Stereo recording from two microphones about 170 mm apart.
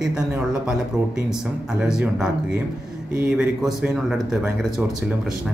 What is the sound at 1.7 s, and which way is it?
Speech, 5° right (ahead or behind).